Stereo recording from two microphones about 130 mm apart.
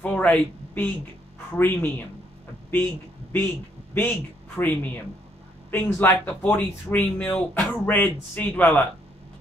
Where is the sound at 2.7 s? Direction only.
15° left (ahead or behind).